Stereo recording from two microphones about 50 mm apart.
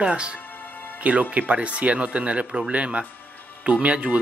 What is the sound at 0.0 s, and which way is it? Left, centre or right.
Speech, right.